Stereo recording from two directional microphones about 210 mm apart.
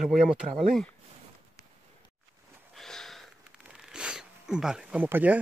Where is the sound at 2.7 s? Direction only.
Centre (ahead or behind).